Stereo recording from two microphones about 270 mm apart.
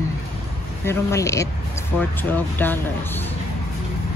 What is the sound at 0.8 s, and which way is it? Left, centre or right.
Speech, centre.